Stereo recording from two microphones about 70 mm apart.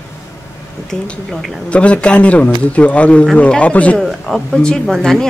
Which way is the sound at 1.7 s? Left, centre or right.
Centre.